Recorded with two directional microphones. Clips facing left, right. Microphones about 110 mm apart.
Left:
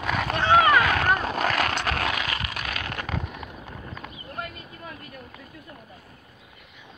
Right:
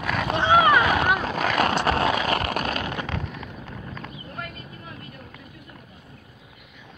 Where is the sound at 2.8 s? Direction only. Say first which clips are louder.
Right 4 dB; 20° right (ahead or behind).